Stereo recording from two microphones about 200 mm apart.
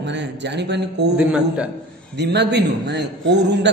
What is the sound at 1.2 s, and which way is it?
Speech, 5° right (ahead or behind).